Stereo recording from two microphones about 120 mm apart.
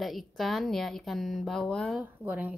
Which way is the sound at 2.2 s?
15° right (ahead or behind).